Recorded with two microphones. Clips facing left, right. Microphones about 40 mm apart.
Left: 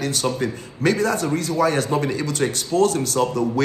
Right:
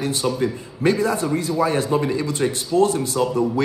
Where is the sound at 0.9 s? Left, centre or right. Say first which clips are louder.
Right 1 dB; left.